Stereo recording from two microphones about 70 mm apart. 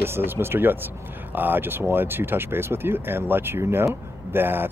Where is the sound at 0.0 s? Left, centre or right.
Right.